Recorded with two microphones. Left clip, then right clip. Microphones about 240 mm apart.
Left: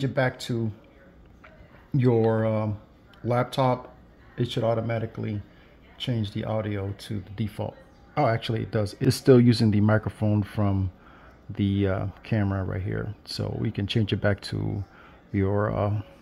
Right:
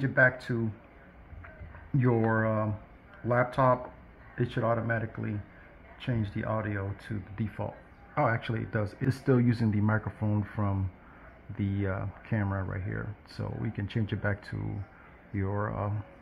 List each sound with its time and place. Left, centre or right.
0.0 s speech: left
2.0 s speech: left